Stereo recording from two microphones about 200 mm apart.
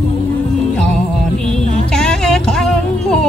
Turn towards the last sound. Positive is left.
turn(degrees=0)  # may be behind; listen again after turning